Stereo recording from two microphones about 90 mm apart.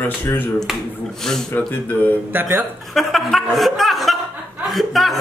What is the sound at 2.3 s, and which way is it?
Speech, 20° right (ahead or behind).